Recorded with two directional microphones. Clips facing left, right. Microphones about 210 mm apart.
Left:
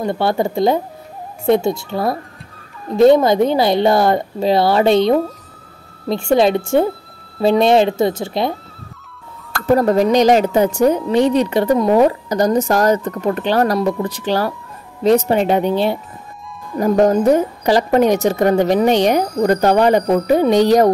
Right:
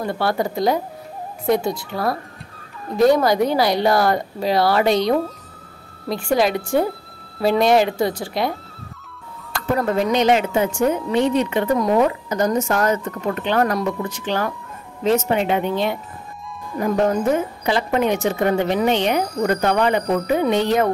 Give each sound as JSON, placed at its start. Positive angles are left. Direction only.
{"t": 0.0, "sound": "a woman's voice", "side_deg": 25}
{"t": 9.8, "sound": "a woman's voice", "side_deg": 40}